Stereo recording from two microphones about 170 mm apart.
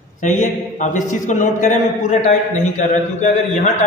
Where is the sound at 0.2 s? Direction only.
45° left (ahead or behind).